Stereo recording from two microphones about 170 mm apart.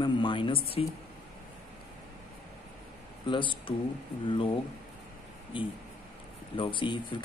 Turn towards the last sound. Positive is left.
turn(degrees=30)  # may be behind; listen again after turning